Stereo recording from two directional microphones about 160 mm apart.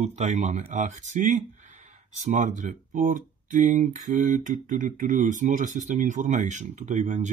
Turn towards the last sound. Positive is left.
turn(degrees=-50)  # may be behind; listen again after turning